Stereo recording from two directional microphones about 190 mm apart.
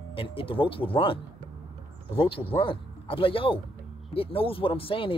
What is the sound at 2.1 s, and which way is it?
Speech, 25° left (ahead or behind).